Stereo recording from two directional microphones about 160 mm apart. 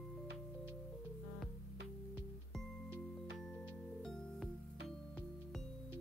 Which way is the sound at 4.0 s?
Centre (ahead or behind).